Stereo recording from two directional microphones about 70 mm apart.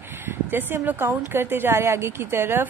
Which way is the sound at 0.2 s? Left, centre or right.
Right.